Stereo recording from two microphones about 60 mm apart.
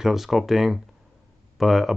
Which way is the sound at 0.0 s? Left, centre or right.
Centre.